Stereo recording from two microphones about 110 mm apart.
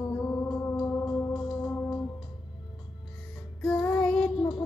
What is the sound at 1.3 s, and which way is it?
Organ, 5° right (ahead or behind).